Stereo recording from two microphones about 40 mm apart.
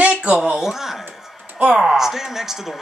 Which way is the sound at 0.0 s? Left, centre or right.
Right.